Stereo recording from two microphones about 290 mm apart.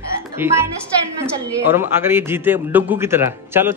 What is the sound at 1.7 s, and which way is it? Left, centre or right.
Speech, centre.